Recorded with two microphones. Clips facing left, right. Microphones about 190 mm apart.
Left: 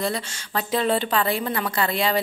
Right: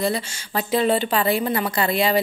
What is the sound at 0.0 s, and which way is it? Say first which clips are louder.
A woman's voice: right 3 dB; 5° right (ahead or behind).